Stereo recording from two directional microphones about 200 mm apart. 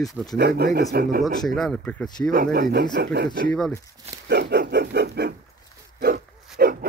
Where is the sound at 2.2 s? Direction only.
50° right (ahead or behind).